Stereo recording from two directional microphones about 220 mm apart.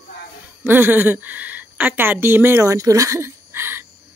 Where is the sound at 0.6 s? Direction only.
10° right (ahead or behind).